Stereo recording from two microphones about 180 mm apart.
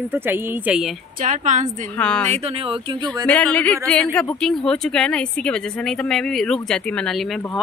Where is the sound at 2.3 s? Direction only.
35° right (ahead or behind).